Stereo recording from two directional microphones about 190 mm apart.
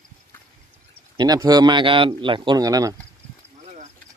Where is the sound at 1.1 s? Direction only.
20° right (ahead or behind).